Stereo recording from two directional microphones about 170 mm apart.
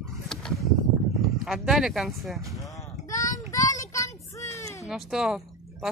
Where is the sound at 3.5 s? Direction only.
20° left (ahead or behind).